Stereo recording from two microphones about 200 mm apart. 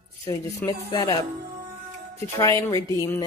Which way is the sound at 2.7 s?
15° left (ahead or behind).